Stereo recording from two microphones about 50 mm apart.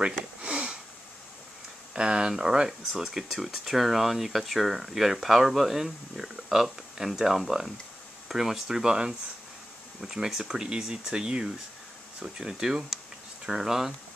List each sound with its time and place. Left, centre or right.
0.4 s sniff: right
2.0 s speech: centre